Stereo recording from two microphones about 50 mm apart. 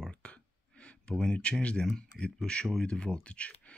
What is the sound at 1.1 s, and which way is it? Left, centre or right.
Speech, centre.